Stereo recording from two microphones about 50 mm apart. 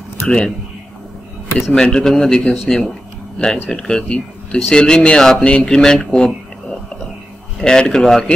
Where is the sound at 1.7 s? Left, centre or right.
Centre.